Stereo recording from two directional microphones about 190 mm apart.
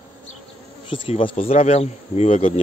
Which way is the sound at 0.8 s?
25° left (ahead or behind).